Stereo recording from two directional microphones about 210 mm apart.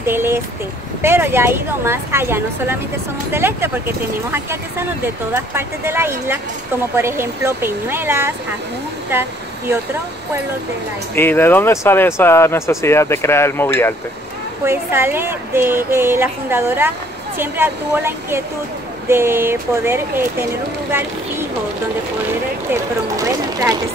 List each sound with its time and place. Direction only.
0.0 s a sound: 10° right (ahead or behind)
1.0 s a woman's voice: 10° right (ahead or behind)
11.1 s speech: 10° left (ahead or behind)
14.6 s a woman's voice: 10° right (ahead or behind)
22.7 s a woman's voice: 15° right (ahead or behind)